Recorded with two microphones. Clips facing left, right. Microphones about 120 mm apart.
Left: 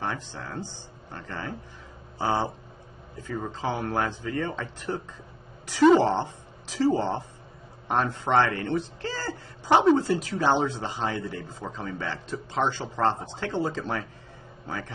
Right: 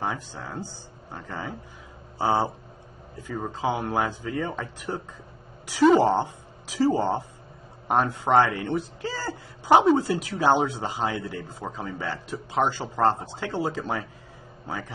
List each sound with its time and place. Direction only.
0.0 s speech: 10° right (ahead or behind)